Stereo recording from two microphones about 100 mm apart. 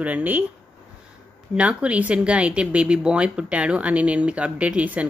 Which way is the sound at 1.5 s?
10° right (ahead or behind).